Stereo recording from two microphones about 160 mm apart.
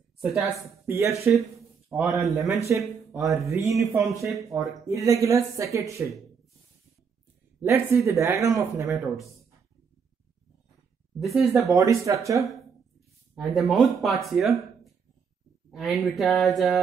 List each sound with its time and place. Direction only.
0.2 s speech: centre (ahead or behind)
0.8 s speech: 15° right (ahead or behind)
1.9 s speech: centre (ahead or behind)
2.7 s a woman's voice: 15° right (ahead or behind)
3.7 s speech: centre (ahead or behind)
4.5 s a woman's voice: 20° right (ahead or behind)
7.6 s speech: 15° right (ahead or behind)
11.1 s speech: centre (ahead or behind)
11.7 s a woman's voice: 20° right (ahead or behind)
13.3 s speech: centre (ahead or behind)
15.7 s speech: centre (ahead or behind)